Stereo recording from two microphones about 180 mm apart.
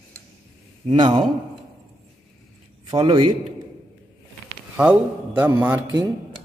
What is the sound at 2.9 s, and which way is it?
Speech, 20° right (ahead or behind).